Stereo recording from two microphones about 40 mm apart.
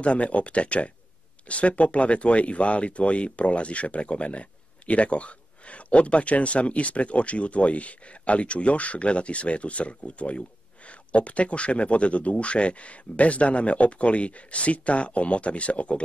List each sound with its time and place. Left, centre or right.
0.0 s speech: left